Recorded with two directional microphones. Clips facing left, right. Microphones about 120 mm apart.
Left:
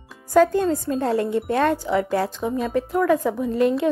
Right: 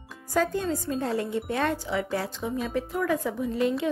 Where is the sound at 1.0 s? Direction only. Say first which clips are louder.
Left 6 dB; 55° left (ahead or behind).